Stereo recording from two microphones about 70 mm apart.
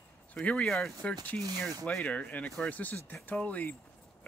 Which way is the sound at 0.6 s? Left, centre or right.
Centre.